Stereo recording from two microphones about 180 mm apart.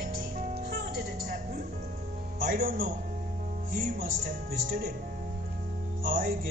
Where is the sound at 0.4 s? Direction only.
55° right (ahead or behind).